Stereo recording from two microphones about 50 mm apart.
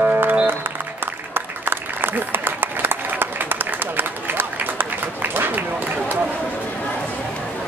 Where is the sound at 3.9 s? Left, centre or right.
Right.